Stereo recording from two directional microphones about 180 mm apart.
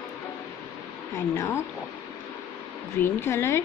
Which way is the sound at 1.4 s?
15° left (ahead or behind).